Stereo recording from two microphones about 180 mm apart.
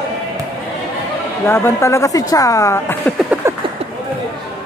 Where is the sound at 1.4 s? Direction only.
15° left (ahead or behind).